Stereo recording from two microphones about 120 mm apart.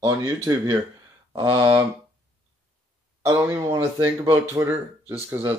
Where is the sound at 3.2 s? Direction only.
25° right (ahead or behind).